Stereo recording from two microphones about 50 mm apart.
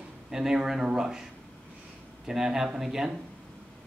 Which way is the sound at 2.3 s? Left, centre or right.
Centre.